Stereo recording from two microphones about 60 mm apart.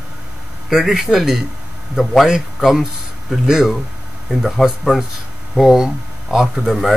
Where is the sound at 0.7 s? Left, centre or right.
Centre.